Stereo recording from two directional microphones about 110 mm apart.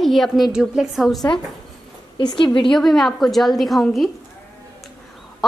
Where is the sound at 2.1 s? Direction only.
50° left (ahead or behind).